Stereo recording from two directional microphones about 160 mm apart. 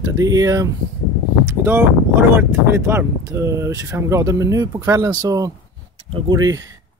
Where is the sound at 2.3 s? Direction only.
15° right (ahead or behind).